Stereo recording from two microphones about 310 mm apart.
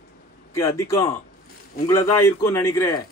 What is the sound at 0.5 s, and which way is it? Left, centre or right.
A man's voice, centre.